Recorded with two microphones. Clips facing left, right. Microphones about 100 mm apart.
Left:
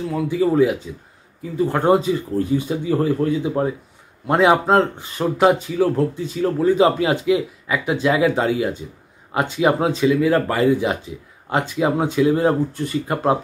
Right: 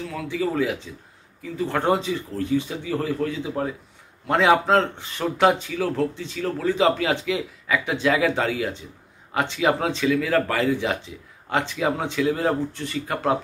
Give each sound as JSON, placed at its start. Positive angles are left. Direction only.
{"t": 0.0, "sound": "speech", "side_deg": 20}
{"t": 2.3, "sound": "speech", "side_deg": 30}
{"t": 6.3, "sound": "speech", "side_deg": 25}